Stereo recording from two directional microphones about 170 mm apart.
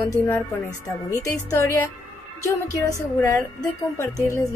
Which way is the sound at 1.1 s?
20° left (ahead or behind).